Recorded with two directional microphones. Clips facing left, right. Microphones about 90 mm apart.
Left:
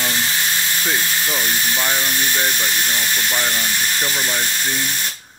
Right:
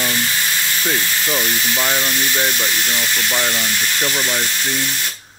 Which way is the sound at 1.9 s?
Centre (ahead or behind).